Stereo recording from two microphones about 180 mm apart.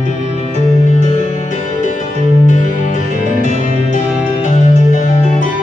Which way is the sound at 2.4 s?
45° left (ahead or behind).